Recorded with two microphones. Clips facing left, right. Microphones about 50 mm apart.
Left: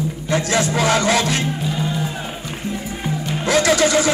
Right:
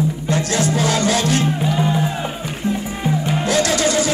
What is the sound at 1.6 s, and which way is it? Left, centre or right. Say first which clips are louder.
Music: right 4 dB; right.